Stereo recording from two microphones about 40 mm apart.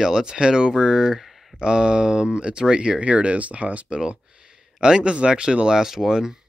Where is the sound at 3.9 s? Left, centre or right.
Right.